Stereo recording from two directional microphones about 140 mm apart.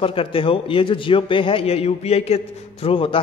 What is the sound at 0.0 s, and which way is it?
A man's voice, 40° left (ahead or behind).